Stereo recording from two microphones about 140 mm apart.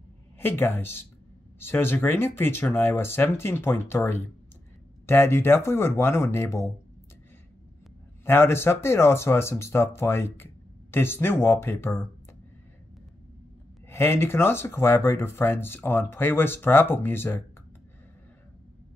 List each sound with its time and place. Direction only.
0.4 s speech: 15° left (ahead or behind)
8.3 s speech: 15° left (ahead or behind)
13.8 s speech: 15° left (ahead or behind)